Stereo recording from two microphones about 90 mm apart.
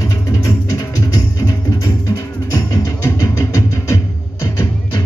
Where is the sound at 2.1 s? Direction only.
35° left (ahead or behind).